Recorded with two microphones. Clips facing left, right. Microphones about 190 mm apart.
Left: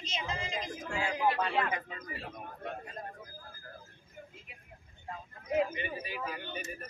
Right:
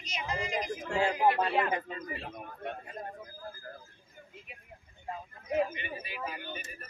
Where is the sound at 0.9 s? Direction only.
35° right (ahead or behind).